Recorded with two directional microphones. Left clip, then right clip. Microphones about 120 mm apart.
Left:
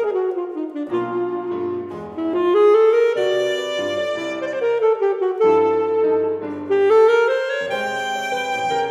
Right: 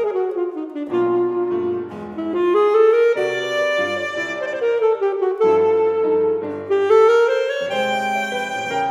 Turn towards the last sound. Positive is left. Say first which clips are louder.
# right 1 dB
turn(degrees=35)  # may be behind; listen again after turning